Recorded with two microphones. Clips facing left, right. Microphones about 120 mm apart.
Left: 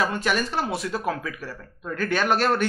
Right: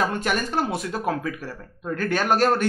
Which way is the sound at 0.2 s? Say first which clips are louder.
Right 1 dB; 50° right (ahead or behind).